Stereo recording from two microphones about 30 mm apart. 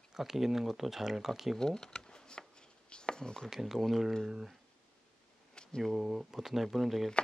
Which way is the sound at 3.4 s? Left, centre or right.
Centre.